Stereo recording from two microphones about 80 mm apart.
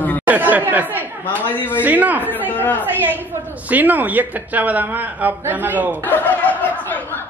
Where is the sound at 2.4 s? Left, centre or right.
Left.